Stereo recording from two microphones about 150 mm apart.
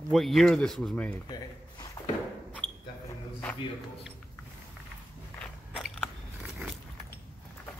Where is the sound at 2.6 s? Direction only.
35° right (ahead or behind).